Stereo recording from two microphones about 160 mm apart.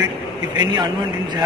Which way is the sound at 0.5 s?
30° right (ahead or behind).